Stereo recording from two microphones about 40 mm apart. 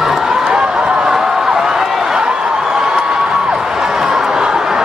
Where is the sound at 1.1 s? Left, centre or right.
Centre.